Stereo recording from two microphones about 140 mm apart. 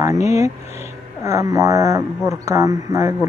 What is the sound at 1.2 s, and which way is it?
Speech, 20° right (ahead or behind).